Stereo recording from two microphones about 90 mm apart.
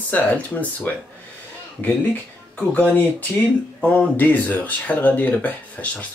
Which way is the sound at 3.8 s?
15° left (ahead or behind).